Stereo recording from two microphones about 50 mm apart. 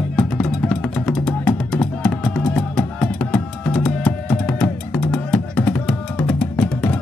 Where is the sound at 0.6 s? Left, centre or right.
Centre.